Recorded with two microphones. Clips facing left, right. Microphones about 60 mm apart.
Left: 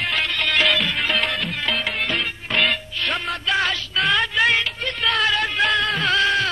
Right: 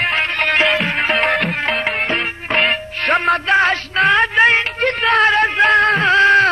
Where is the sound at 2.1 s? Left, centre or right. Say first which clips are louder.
Right 5 dB; right.